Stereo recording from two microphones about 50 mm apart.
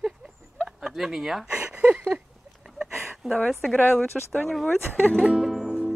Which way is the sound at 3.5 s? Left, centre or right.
Centre.